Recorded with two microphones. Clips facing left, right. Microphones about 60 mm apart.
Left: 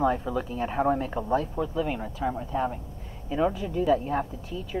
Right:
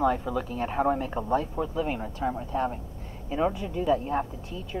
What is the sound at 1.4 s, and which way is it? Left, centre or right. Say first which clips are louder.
Speech: left 1 dB; centre.